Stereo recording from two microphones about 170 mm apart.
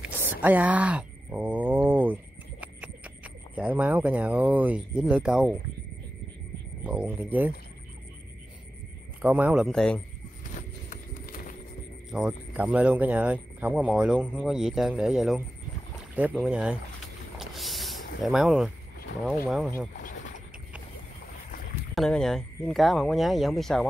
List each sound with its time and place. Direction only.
0.0 s a sound: 10° right (ahead or behind)
2.6 s horse: 5° right (ahead or behind)
3.5 s speech: 10° right (ahead or behind)
6.8 s speech: 10° right (ahead or behind)
9.2 s speech: 5° right (ahead or behind)
10.5 s clip-clop: 50° left (ahead or behind)
12.1 s speech: 5° right (ahead or behind)
17.4 s vehicle: centre (ahead or behind)
20.0 s boat: 50° left (ahead or behind)
21.9 s speech: centre (ahead or behind)